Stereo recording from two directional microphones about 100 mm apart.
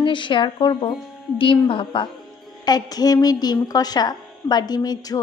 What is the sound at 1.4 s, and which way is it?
Speech, 60° left (ahead or behind).